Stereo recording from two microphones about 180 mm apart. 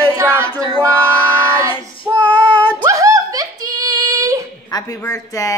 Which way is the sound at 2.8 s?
20° right (ahead or behind).